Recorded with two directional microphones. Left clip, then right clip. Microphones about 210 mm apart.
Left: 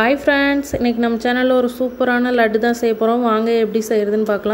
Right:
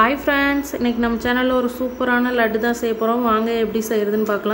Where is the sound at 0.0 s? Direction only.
20° left (ahead or behind).